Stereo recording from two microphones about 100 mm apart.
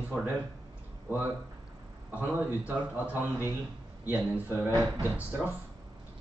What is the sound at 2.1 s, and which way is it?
Speech, 15° right (ahead or behind).